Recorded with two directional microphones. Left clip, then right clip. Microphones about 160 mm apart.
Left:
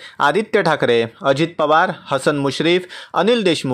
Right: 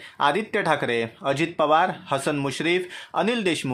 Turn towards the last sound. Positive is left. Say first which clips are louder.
# left 8 dB
turn(degrees=35)  # may be behind; listen again after turning